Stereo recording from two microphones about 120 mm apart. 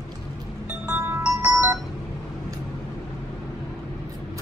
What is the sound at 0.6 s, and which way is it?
Music, 10° right (ahead or behind).